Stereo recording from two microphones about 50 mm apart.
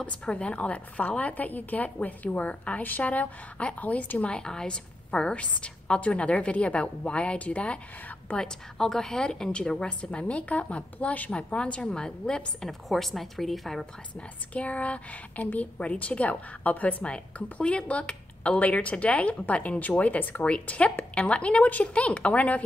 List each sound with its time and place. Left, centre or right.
0.2 s a woman's voice: left
4.3 s a woman's voice: centre
8.4 s a woman's voice: centre
12.8 s speech: centre
14.5 s a woman's voice: left